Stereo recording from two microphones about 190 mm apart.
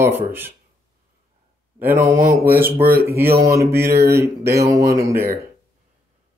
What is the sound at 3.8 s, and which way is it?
Speech, 55° right (ahead or behind).